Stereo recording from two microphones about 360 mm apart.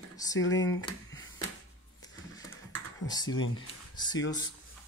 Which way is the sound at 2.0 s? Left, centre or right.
Centre.